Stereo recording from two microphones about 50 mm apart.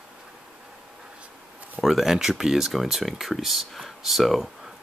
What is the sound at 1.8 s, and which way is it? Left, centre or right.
Speech, centre.